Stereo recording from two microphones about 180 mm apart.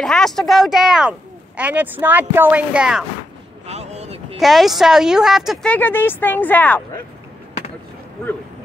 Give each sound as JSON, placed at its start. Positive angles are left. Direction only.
{"t": 0.0, "sound": "a woman's voice", "side_deg": 0}
{"t": 3.6, "sound": "boat", "side_deg": -40}
{"t": 4.4, "sound": "a woman's voice", "side_deg": 0}